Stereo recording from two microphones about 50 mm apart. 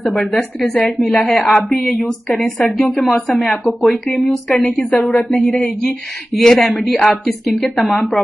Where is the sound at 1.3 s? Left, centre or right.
Left.